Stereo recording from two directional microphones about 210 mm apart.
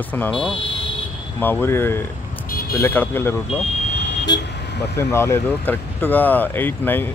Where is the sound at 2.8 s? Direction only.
10° left (ahead or behind).